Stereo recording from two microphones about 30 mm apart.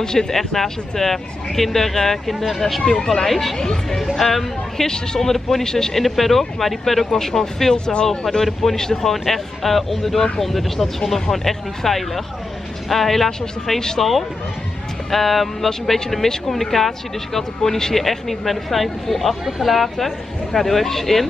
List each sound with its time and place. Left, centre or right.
0.0 s speech: left
0.3 s speech: centre
4.7 s speech: left
5.9 s speech: centre
7.7 s speech: left
9.1 s speech: centre
17.9 s speech: centre